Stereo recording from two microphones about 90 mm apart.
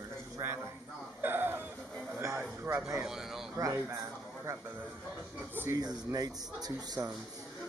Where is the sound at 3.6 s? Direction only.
45° right (ahead or behind).